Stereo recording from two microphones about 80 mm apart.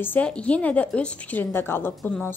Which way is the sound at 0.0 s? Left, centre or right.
Left.